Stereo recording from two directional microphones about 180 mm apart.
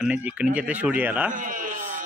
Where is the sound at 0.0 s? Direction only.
5° right (ahead or behind).